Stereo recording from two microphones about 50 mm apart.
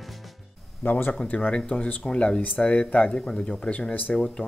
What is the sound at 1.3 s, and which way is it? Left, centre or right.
Speech, left.